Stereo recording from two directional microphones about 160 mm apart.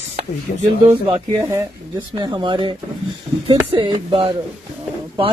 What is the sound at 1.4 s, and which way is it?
Speech, 20° right (ahead or behind).